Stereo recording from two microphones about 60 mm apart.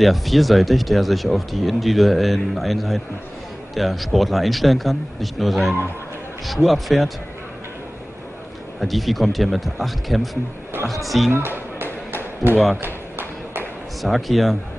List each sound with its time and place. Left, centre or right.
0.0 s speech: centre
8.7 s speech: centre
11.3 s a sound: right
14.0 s speech: centre